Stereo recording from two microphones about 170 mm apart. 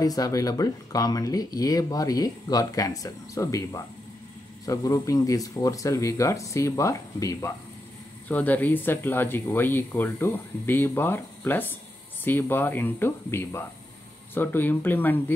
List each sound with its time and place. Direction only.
0.0 s speech: 20° left (ahead or behind)